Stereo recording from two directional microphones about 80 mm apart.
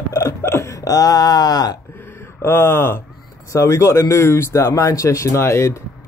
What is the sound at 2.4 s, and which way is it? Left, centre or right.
Speech, left.